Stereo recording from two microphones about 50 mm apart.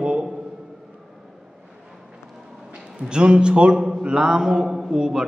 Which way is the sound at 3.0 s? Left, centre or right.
Centre.